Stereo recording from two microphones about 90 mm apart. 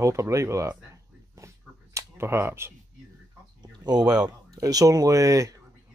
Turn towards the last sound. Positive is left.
turn(degrees=-35)  # may be behind; listen again after turning